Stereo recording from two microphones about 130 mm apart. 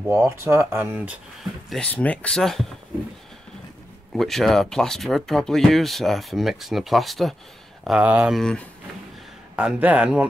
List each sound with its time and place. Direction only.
0.0 s speech: 20° right (ahead or behind)
1.7 s speech: 10° left (ahead or behind)
4.1 s speech: centre (ahead or behind)
8.4 s speech: 5° left (ahead or behind)
9.6 s speech: 10° right (ahead or behind)